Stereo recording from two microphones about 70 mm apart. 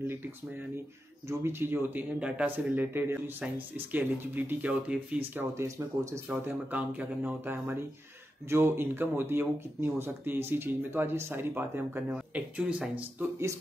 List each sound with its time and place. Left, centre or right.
0.0 s speech: right
2.1 s speech: centre
2.5 s speech: right
5.6 s speech: right
6.3 s speech: right
12.4 s speech: centre